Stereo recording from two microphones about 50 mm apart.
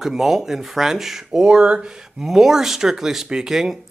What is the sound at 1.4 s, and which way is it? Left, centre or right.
Speech, right.